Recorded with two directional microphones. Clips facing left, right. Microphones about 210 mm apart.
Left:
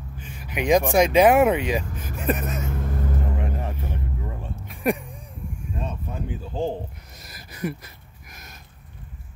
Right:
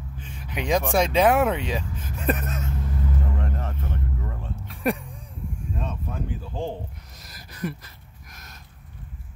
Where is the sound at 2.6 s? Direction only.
55° left (ahead or behind).